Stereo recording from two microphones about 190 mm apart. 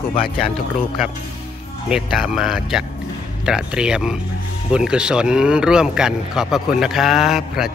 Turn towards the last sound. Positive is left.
turn(degrees=0)  # may be behind; listen again after turning